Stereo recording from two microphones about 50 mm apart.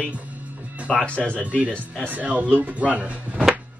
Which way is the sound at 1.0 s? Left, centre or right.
Left.